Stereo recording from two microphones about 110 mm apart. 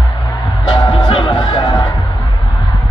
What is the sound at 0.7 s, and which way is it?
Music, 45° left (ahead or behind).